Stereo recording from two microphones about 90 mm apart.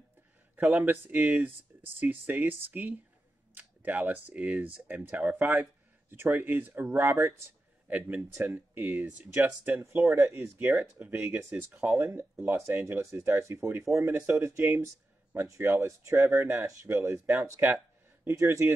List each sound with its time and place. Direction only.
0.8 s speech: 20° right (ahead or behind)
7.9 s speech: 20° right (ahead or behind)
9.8 s speech: 30° right (ahead or behind)
18.2 s speech: 30° right (ahead or behind)